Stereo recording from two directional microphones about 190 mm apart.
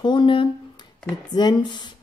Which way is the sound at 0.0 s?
25° left (ahead or behind).